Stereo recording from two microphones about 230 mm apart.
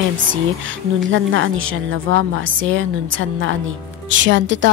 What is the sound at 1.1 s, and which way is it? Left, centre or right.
A woman's voice, right.